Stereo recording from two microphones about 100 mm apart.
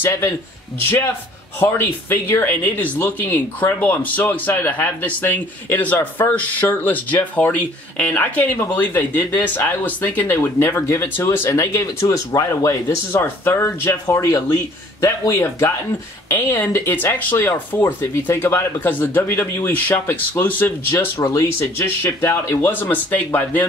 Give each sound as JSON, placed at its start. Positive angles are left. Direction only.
{"t": 0.0, "sound": "speech", "side_deg": 30}